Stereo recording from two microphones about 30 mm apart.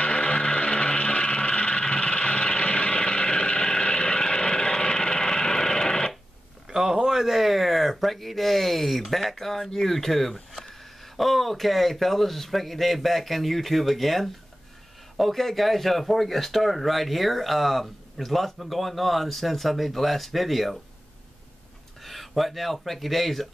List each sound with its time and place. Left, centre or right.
0.0 s vehicle: left
6.7 s a sound: centre
8.0 s speech: centre
22.0 s speech: centre